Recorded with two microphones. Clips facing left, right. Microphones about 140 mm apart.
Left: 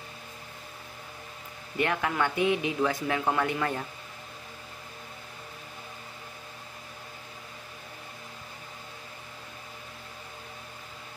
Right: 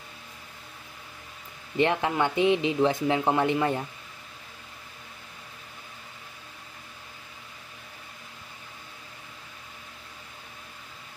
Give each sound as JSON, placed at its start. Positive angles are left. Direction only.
{"t": 1.8, "sound": "speech", "side_deg": -25}